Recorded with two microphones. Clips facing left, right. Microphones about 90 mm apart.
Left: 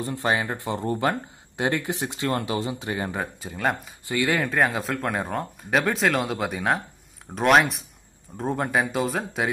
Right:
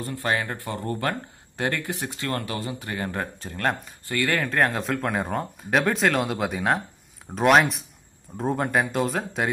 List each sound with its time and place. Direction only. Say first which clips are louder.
0.0 s speech: left 2 dB; 20° left (ahead or behind); by 3.9 s 5° left (ahead or behind)
4.0 s speech: left 1 dB; 15° left (ahead or behind)